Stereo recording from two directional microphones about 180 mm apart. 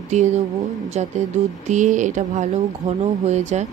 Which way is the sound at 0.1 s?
40° right (ahead or behind).